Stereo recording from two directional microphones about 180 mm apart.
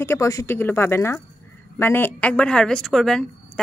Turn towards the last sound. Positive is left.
turn(degrees=5)  # may be behind; listen again after turning